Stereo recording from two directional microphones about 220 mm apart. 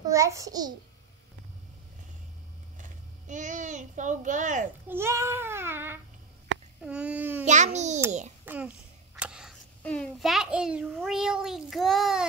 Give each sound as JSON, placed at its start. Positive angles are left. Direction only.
{"t": 0.0, "sound": "a child's voice", "side_deg": -15}
{"t": 2.8, "sound": "a child's voice", "side_deg": -35}
{"t": 4.8, "sound": "child singing", "side_deg": -10}
{"t": 7.4, "sound": "a child's voice", "side_deg": -30}
{"t": 8.5, "sound": "a child's voice", "side_deg": -10}